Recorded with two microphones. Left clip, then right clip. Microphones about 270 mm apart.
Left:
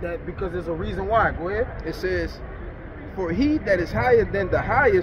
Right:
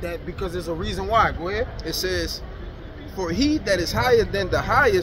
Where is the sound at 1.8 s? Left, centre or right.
Right.